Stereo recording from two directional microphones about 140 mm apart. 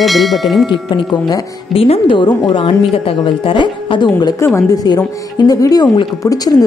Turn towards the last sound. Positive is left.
turn(degrees=25)  # may be behind; listen again after turning